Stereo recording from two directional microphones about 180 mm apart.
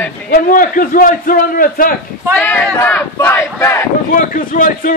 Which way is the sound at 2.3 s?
10° left (ahead or behind).